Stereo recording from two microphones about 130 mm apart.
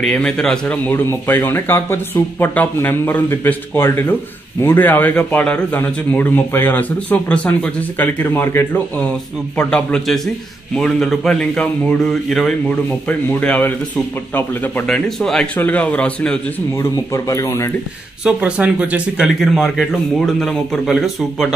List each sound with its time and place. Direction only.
0.0 s speech: 5° left (ahead or behind)
15.0 s speech: 5° left (ahead or behind)
16.7 s speech: 25° left (ahead or behind)
18.2 s speech: 10° right (ahead or behind)